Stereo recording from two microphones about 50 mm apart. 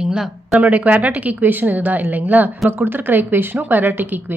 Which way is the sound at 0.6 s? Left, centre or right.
Right.